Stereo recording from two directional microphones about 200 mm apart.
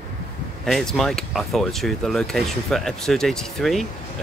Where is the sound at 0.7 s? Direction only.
Centre (ahead or behind).